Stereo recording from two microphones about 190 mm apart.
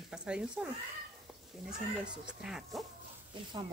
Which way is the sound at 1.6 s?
5° right (ahead or behind).